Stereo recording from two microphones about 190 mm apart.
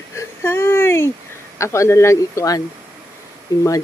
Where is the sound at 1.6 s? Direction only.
15° left (ahead or behind).